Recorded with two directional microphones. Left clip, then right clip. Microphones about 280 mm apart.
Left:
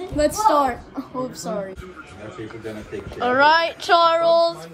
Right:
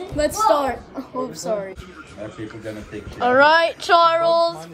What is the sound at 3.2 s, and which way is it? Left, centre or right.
A woman's voice, centre.